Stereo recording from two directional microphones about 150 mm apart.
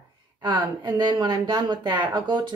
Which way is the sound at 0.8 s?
30° right (ahead or behind).